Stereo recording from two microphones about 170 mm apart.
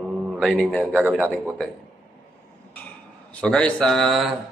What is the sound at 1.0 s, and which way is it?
Speech, 10° right (ahead or behind).